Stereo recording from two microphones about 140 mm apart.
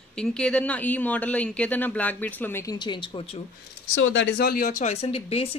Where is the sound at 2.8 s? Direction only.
35° left (ahead or behind).